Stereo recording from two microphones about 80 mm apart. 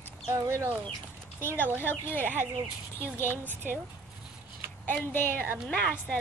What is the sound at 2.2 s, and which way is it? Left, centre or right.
A woman's voice, right.